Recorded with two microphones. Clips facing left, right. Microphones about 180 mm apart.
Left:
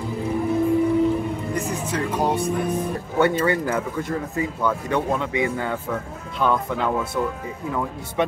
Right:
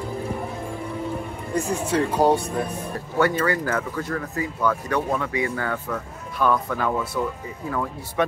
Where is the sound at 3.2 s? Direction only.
25° left (ahead or behind).